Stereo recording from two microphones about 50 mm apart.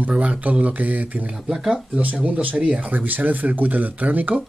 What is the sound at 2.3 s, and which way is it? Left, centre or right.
Speech, right.